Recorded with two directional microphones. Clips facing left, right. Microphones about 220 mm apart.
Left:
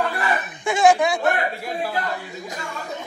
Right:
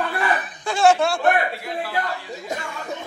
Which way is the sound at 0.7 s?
15° left (ahead or behind).